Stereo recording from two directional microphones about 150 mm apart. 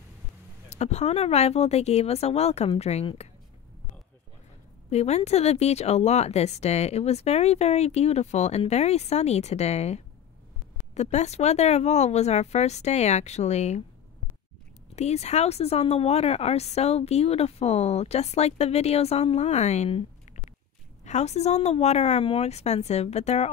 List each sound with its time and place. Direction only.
0.7 s speech: 45° left (ahead or behind)
4.8 s speech: 45° left (ahead or behind)
15.0 s speech: 45° left (ahead or behind)